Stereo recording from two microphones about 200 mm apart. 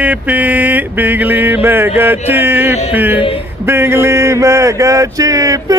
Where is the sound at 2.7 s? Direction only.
35° left (ahead or behind).